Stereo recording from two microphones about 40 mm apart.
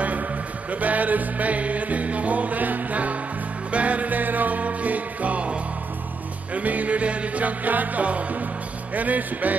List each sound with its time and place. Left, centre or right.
0.7 s music: right
8.9 s speech: right